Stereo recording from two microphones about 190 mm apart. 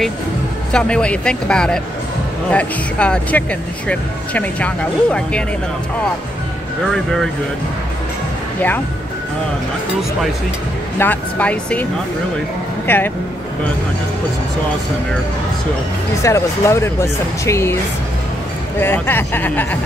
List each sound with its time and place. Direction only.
0.7 s speech: 5° left (ahead or behind)
6.9 s speech: centre (ahead or behind)
11.0 s speech: 10° left (ahead or behind)
16.2 s speech: 15° left (ahead or behind)
18.8 s speech: 10° left (ahead or behind)